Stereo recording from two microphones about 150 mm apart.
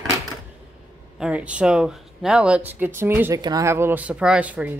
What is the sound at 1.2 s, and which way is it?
Speech, 10° right (ahead or behind).